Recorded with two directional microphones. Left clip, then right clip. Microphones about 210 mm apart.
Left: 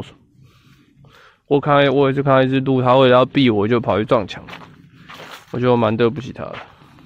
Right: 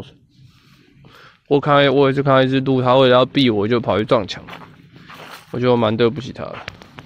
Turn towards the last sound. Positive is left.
turn(degrees=0)  # may be behind; listen again after turning